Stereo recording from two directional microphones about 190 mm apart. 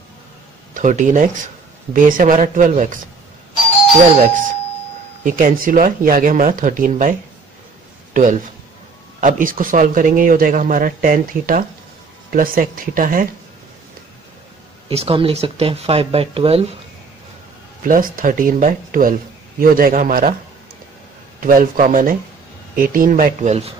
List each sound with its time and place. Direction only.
0.7 s speech: 40° right (ahead or behind)
5.2 s speech: 45° right (ahead or behind)
14.9 s speech: 30° right (ahead or behind)
17.8 s speech: 45° right (ahead or behind)
21.4 s speech: 45° right (ahead or behind)